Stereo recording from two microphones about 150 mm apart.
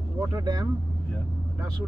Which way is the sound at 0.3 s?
25° right (ahead or behind).